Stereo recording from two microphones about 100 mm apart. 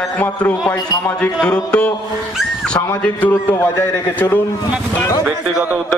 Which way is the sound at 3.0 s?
15° left (ahead or behind).